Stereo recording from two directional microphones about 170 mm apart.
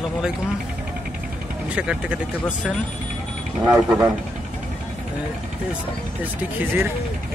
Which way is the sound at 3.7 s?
20° right (ahead or behind).